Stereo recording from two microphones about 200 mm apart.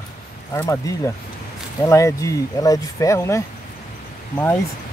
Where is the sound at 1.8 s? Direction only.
15° left (ahead or behind).